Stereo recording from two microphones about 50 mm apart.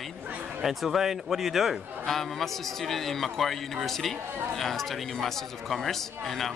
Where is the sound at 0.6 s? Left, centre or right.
Centre.